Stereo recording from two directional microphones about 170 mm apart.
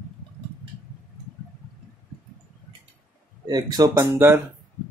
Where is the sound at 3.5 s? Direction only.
20° right (ahead or behind).